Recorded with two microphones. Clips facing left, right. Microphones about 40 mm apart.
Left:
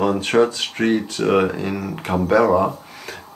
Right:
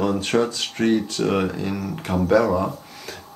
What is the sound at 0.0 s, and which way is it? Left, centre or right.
Speech, centre.